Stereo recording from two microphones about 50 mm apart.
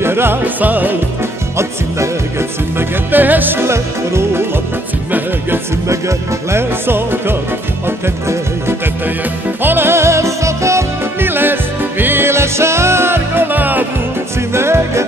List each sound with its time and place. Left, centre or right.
0.0 s music: right
0.6 s music: right
3.1 s music: right
3.6 s music: right
5.9 s music: right
6.9 s music: right
9.6 s music: right
11.1 s music: right
14.5 s music: right